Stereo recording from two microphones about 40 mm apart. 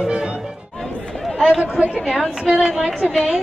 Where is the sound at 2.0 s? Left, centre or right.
Centre.